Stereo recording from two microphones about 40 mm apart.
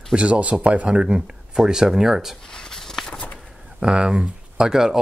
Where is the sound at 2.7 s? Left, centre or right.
Centre.